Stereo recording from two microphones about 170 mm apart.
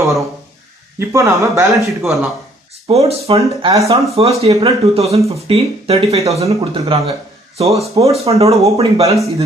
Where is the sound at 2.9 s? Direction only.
35° right (ahead or behind).